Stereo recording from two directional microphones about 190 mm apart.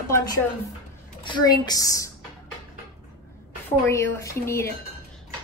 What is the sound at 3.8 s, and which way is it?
Speech, 15° left (ahead or behind).